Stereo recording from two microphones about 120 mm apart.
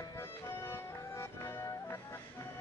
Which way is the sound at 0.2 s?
25° left (ahead or behind).